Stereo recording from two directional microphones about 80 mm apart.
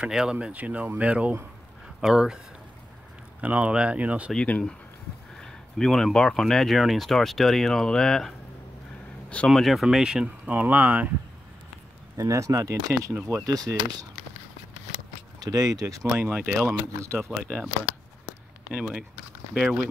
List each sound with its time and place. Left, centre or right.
0.0 s speech: centre
3.3 s speech: centre
4.5 s speech: centre
5.4 s speech: centre
9.5 s speech: centre
10.2 s speech: centre
12.2 s speech: right
15.4 s speech: right
16.2 s speech: right
17.4 s speech: centre
18.7 s speech: centre